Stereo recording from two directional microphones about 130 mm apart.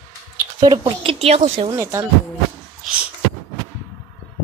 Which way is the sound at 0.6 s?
40° right (ahead or behind).